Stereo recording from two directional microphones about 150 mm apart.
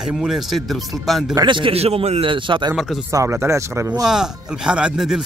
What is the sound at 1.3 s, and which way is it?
A man's voice, 30° right (ahead or behind).